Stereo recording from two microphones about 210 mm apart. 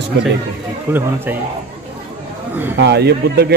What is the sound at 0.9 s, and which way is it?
Speech, 10° right (ahead or behind).